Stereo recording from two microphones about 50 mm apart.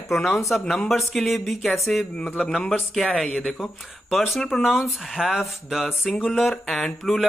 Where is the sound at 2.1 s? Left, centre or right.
Left.